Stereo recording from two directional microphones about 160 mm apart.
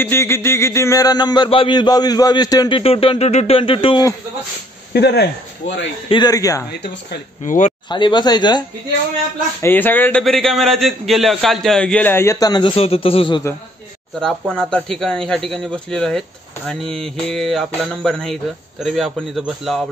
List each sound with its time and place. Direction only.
0.0 s speech: 15° left (ahead or behind)
2.8 s speech: 35° left (ahead or behind)
4.9 s speech: 85° left
6.0 s speech: 25° left (ahead or behind)
6.8 s speech: 90° left
7.4 s speech: 55° left (ahead or behind)
7.9 s speech: 30° left (ahead or behind)
9.6 s a man's voice: 10° left (ahead or behind)
10.2 s a man's voice: centre (ahead or behind); by 13.4 s 35° left (ahead or behind)
14.5 s speech: 5° left (ahead or behind)